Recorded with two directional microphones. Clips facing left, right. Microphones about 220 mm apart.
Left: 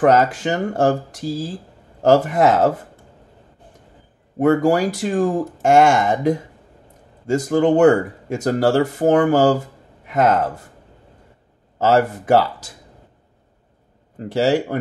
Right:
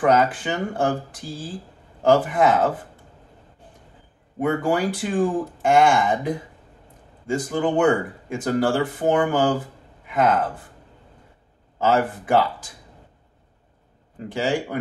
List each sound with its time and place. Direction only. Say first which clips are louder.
0.1 s speech: left 3 dB; 40° left (ahead or behind)
4.4 s speech: left 6 dB; 40° left (ahead or behind)
11.8 s speech: left 4 dB; 40° left (ahead or behind)
14.3 s speech: left 6 dB; 40° left (ahead or behind)